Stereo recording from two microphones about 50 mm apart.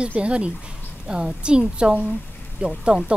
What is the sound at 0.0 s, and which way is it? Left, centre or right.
A woman's voice, right.